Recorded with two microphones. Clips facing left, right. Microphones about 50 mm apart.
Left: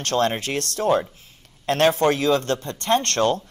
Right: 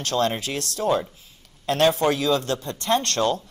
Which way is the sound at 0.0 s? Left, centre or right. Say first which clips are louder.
Left 2 dB; left.